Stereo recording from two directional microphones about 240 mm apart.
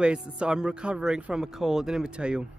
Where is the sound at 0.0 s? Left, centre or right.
Centre.